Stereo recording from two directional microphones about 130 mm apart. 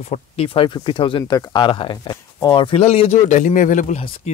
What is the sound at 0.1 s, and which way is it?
Speech, 45° left (ahead or behind).